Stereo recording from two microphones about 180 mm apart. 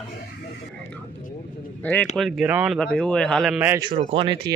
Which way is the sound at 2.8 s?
5° left (ahead or behind).